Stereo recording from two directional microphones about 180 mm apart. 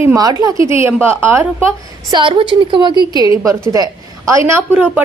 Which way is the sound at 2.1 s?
30° right (ahead or behind).